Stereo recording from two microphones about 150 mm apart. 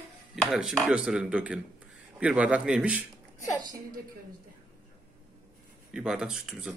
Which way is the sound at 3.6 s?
25° right (ahead or behind).